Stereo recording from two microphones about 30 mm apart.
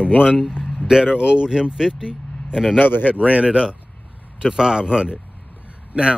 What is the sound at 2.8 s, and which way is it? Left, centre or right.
Speech, left.